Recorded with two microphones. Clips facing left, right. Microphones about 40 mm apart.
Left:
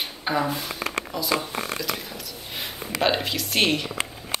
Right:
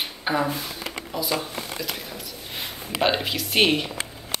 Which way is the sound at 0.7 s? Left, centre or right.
Left.